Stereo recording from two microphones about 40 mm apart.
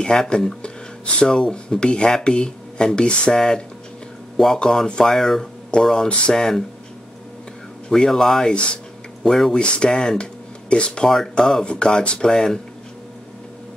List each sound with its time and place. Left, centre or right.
0.0 s speech: centre
5.0 s speech: centre
7.9 s speech: centre
9.6 s speech: left
10.1 s a sound: left
11.3 s speech: centre
11.6 s speech: left